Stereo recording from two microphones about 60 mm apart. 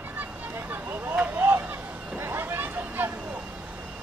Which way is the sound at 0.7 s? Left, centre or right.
Right.